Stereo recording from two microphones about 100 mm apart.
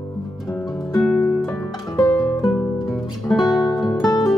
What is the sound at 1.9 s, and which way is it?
Music, 35° left (ahead or behind).